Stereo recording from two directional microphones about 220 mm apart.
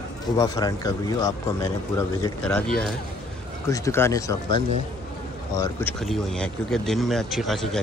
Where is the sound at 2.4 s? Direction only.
5° left (ahead or behind).